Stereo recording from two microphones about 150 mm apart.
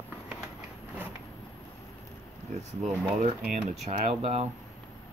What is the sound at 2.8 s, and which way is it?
Speech, 45° right (ahead or behind).